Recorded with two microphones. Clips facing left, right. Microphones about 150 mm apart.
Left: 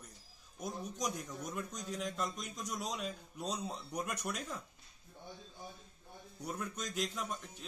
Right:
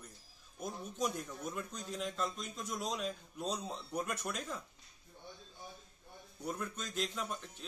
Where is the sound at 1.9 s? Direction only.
5° right (ahead or behind).